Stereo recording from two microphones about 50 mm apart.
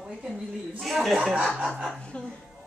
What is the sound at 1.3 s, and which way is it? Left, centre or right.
Speech, right.